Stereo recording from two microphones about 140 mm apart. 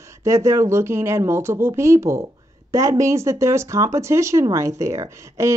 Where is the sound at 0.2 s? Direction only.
20° right (ahead or behind).